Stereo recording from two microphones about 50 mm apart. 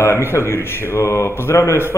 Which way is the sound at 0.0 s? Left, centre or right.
Left.